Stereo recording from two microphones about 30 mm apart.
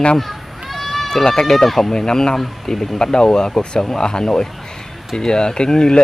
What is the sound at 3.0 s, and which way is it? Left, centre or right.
Speech, left.